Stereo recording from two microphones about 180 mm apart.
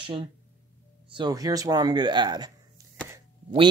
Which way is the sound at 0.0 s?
30° right (ahead or behind).